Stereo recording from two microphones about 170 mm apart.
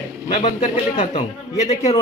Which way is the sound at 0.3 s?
45° left (ahead or behind).